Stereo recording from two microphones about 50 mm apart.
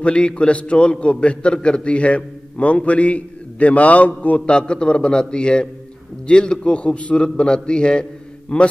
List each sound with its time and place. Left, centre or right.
0.0 s a man's voice: left